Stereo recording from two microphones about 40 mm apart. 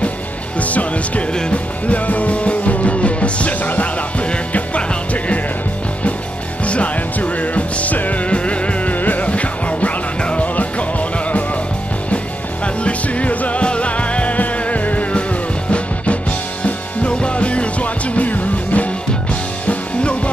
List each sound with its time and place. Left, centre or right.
0.6 s music: left
4.2 s music: left
6.6 s music: left
12.6 s music: left
16.6 s music: left
19.7 s music: left